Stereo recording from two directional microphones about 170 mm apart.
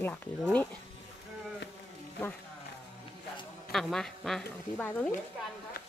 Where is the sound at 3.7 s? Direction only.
Centre (ahead or behind).